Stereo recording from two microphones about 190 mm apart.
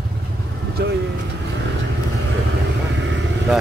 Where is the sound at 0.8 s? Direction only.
60° right (ahead or behind).